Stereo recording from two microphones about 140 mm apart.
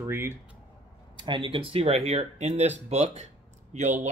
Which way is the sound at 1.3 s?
35° right (ahead or behind).